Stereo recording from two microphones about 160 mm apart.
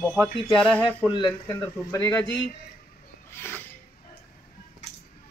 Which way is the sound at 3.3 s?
15° left (ahead or behind).